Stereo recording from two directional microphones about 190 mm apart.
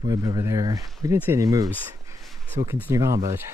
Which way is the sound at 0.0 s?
20° right (ahead or behind).